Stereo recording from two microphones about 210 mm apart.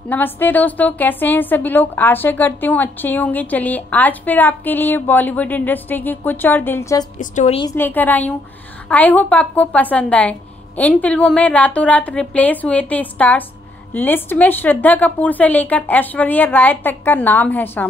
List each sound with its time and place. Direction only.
0.1 s a woman's voice: 10° left (ahead or behind)
7.2 s a woman's voice: 35° left (ahead or behind)
7.7 s a woman's voice: 10° left (ahead or behind)